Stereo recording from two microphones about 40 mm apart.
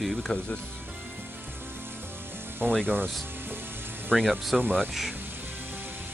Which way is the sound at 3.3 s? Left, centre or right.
Right.